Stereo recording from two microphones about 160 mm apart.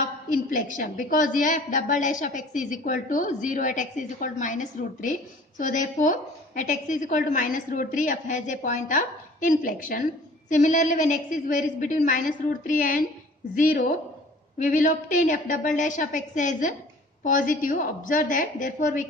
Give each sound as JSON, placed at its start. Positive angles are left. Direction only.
{"t": 0.3, "sound": "a woman's voice", "side_deg": 55}